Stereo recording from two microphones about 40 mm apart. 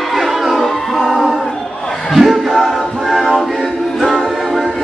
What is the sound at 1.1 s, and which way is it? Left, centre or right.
Choir, centre.